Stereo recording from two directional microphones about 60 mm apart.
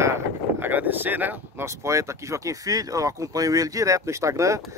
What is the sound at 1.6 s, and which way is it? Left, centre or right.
Speech, right.